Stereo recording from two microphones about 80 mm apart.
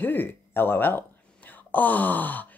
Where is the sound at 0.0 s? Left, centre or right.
Left.